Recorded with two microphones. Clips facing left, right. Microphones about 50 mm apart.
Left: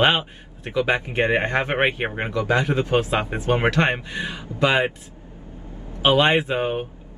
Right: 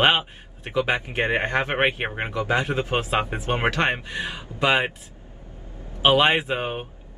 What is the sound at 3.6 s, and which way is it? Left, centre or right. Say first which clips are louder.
Speech: right 1 dB; centre.